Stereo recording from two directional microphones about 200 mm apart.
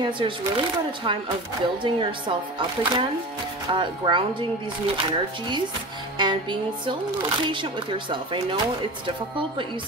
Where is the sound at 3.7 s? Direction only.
25° right (ahead or behind).